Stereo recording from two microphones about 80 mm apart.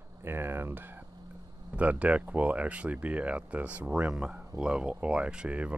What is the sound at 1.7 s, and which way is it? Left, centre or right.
Speech, centre.